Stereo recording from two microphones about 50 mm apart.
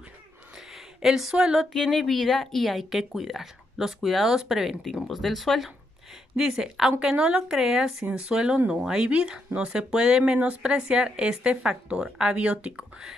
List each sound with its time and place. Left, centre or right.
1.0 s speech: centre
1.7 s speech: centre
6.3 s speech: centre